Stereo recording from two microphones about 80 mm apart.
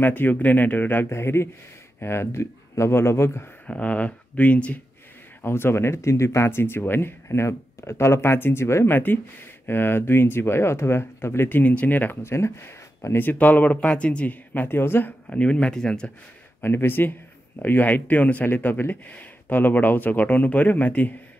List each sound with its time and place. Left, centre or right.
0.0 s speech: left
3.6 s speech: centre
5.4 s speech: left
15.2 s speech: centre
16.6 s speech: left